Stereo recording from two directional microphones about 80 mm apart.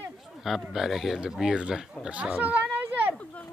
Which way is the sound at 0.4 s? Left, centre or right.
Centre.